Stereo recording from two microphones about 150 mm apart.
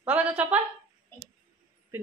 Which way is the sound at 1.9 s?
15° right (ahead or behind).